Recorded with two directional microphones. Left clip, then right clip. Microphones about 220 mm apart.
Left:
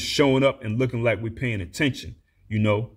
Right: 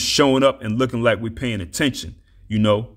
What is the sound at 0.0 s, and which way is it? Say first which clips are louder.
Speech: right 4 dB; 35° right (ahead or behind).